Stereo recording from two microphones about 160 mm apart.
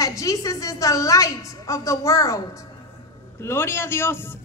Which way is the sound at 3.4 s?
15° left (ahead or behind).